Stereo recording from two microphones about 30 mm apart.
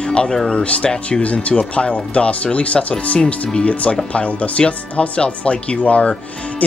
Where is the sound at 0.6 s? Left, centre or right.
Left.